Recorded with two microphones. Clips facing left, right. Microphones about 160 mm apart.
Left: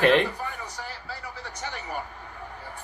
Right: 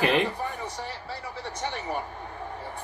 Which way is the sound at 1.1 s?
25° right (ahead or behind).